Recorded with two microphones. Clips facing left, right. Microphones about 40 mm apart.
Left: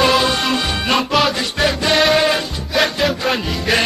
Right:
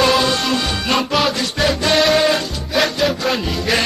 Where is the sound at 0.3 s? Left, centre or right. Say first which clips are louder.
Even; centre.